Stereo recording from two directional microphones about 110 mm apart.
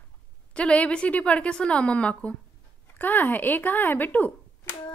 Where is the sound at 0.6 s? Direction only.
10° left (ahead or behind).